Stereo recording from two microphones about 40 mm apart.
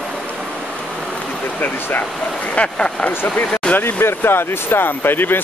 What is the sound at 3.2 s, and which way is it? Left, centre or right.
Speech, left.